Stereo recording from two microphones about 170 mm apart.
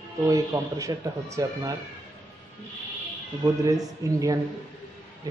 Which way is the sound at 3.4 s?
20° right (ahead or behind).